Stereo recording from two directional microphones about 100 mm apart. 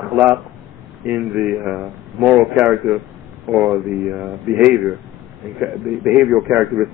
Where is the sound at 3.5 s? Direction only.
Centre (ahead or behind).